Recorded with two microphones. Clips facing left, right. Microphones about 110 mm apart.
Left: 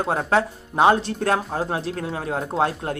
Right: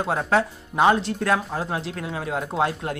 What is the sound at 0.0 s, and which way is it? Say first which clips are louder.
Speech: left 1 dB; 35° left (ahead or behind).